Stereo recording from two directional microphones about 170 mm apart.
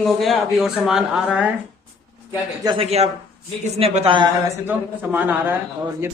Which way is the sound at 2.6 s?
30° right (ahead or behind).